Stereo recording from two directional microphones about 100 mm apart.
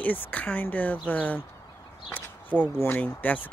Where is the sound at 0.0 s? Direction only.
15° left (ahead or behind).